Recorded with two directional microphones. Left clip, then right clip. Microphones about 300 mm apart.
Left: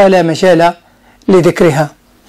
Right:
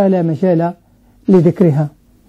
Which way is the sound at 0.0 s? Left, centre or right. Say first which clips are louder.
Left 7 dB; centre.